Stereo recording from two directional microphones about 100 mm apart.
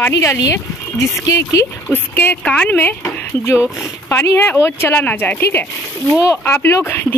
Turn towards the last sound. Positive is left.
turn(degrees=20)  # may be behind; listen again after turning